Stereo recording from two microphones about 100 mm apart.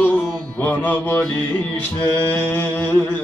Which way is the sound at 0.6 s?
20° left (ahead or behind).